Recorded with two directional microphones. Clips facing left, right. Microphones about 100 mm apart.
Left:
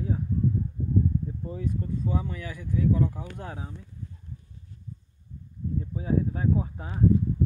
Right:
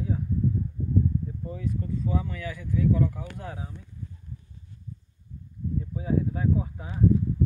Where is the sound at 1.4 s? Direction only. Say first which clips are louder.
Even; 30° left (ahead or behind).